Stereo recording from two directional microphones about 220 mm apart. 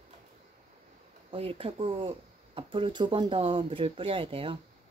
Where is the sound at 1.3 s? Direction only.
25° right (ahead or behind).